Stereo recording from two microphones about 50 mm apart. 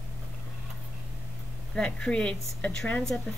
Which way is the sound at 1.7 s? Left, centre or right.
Centre.